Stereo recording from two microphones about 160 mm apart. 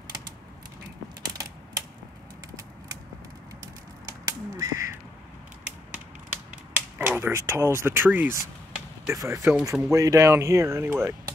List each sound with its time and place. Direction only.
4.3 s crow: 20° right (ahead or behind)
6.5 s speech: 10° right (ahead or behind)